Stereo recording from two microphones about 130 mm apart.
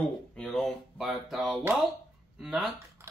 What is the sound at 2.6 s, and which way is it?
Speech, 20° right (ahead or behind).